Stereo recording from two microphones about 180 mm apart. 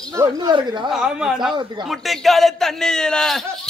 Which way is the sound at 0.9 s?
Centre (ahead or behind).